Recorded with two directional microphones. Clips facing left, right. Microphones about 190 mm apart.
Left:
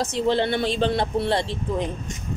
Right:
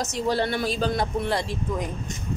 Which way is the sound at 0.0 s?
25° left (ahead or behind).